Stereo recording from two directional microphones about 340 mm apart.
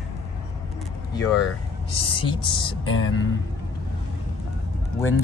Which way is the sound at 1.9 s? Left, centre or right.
Centre.